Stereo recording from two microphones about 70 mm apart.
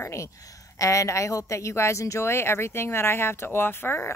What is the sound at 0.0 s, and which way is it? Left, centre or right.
Speech, left.